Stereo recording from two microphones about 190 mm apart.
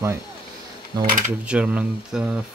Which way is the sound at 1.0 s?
45° right (ahead or behind).